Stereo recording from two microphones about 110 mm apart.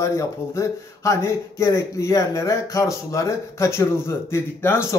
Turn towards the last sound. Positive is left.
turn(degrees=25)  # may be behind; listen again after turning